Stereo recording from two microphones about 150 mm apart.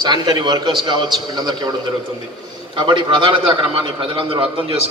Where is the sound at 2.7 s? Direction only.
30° right (ahead or behind).